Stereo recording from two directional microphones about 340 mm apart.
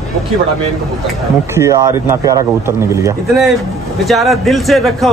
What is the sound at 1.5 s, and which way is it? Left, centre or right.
Speech, centre.